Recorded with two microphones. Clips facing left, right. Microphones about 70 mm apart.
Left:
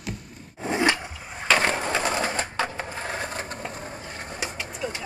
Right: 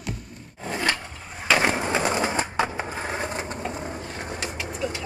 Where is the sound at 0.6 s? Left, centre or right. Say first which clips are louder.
Left 4 dB; centre.